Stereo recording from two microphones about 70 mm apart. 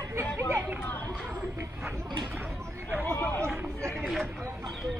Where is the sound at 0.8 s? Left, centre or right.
Left.